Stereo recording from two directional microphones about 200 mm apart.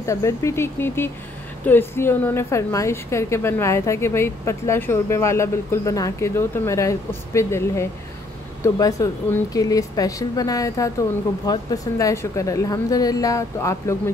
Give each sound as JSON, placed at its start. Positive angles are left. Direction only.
{"t": 0.0, "sound": "a woman's voice", "side_deg": 15}